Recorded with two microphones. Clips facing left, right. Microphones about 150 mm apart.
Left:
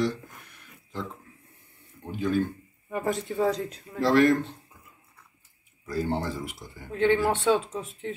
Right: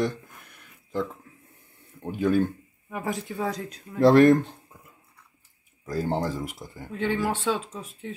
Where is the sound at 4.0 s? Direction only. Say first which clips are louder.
Right 5 dB; 55° right (ahead or behind).